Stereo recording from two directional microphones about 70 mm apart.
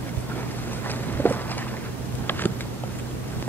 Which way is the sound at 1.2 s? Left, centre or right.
Left.